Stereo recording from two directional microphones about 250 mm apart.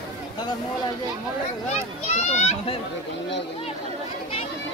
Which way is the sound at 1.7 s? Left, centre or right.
Left.